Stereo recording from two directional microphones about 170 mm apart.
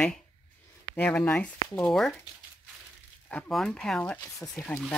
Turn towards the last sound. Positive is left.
turn(degrees=5)  # may be behind; listen again after turning